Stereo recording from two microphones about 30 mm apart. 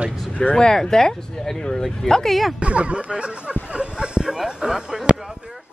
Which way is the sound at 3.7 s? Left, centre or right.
Right.